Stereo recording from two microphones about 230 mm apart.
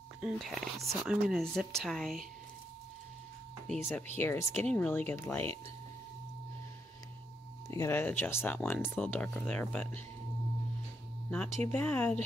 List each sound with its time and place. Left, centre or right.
0.2 s speech: centre
3.6 s speech: centre
7.7 s speech: centre
11.2 s speech: centre